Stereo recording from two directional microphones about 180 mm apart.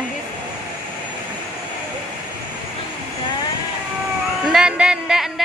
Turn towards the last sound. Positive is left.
turn(degrees=-5)  # may be behind; listen again after turning